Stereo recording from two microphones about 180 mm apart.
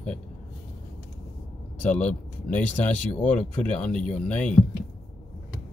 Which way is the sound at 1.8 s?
5° left (ahead or behind).